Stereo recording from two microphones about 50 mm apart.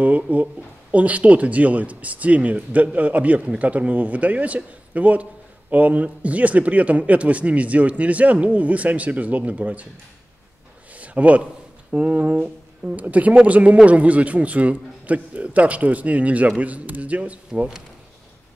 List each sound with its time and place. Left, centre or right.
0.0 s speech: right
11.0 s a sound: right
11.9 s speech: right